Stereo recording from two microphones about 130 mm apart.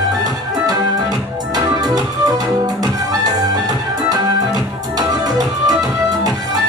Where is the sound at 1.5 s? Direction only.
30° right (ahead or behind).